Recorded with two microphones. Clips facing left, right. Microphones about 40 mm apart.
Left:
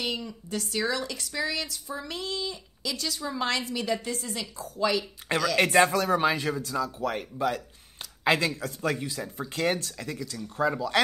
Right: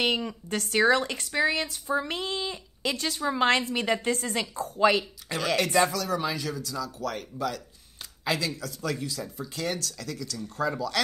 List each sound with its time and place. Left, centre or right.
0.0 s a woman's voice: right
5.6 s speech: left